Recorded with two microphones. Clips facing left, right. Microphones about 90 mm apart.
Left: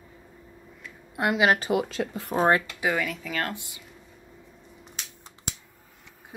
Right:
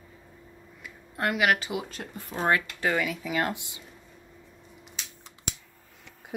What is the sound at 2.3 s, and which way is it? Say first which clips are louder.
Speech: left 4 dB; 35° left (ahead or behind).